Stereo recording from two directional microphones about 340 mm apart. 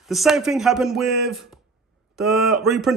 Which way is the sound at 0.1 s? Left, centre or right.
Centre.